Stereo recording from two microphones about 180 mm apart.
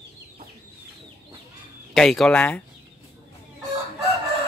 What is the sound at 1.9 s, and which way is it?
Speech, centre (ahead or behind).